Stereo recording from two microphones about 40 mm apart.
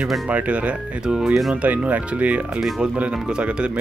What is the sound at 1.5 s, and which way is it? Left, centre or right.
Speech, right.